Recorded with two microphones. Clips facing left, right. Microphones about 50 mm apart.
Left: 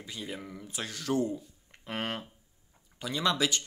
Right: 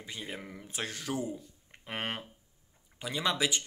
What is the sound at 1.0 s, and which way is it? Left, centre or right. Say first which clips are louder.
Speech: left 9 dB; centre.